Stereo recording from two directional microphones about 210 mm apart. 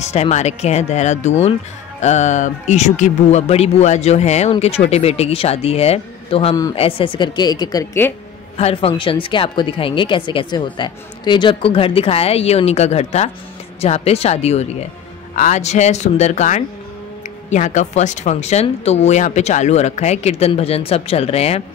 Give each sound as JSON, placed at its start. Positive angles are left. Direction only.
{"t": 0.0, "sound": "speech", "side_deg": 30}
{"t": 6.5, "sound": "speech", "side_deg": 15}
{"t": 8.5, "sound": "speech", "side_deg": 30}